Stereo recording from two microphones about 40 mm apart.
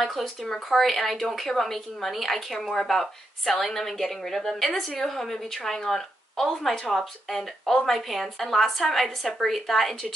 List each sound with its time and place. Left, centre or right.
0.0 s a woman's voice: centre